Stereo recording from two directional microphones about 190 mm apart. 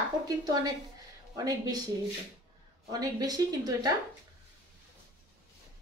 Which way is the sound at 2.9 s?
20° right (ahead or behind).